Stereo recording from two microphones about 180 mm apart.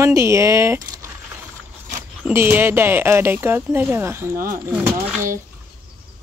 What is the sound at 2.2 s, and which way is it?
Speech, 10° right (ahead or behind).